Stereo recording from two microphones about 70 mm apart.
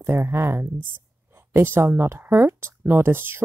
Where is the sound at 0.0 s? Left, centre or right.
Right.